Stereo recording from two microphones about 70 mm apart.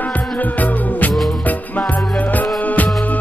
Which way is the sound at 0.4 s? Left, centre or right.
Left.